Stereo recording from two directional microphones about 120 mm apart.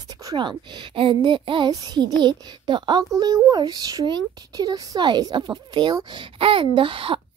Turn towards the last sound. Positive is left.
turn(degrees=-45)  # may be behind; listen again after turning